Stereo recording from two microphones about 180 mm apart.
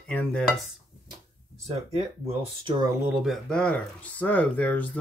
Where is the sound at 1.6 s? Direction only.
35° right (ahead or behind).